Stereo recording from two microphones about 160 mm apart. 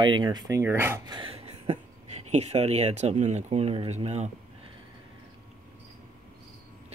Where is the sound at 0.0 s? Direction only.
30° right (ahead or behind).